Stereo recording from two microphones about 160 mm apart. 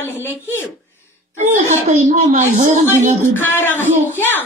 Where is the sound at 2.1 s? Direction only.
40° right (ahead or behind).